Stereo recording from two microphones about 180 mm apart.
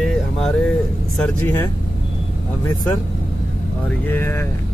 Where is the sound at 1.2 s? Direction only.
10° left (ahead or behind).